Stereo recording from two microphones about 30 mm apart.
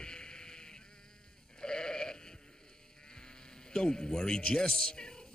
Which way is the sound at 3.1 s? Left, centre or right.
Left.